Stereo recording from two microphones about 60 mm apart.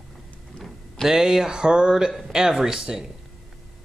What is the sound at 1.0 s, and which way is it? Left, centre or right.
Speech, centre.